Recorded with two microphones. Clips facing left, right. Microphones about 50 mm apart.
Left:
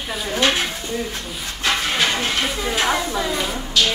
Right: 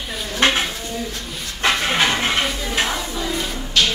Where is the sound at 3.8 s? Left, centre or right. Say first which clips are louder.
Right 1 dB; right.